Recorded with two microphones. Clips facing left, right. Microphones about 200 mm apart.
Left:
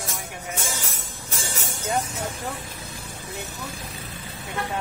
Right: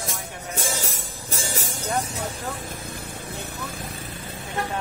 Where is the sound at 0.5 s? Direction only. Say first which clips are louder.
Right 5 dB; 35° right (ahead or behind).